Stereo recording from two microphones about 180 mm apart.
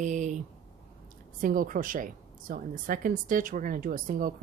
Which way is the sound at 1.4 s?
50° right (ahead or behind).